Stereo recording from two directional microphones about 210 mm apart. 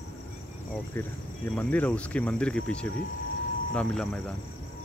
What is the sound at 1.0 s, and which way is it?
Speech, 10° left (ahead or behind).